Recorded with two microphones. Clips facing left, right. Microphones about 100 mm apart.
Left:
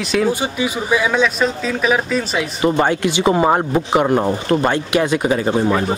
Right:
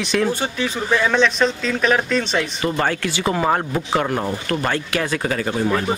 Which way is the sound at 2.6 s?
20° left (ahead or behind).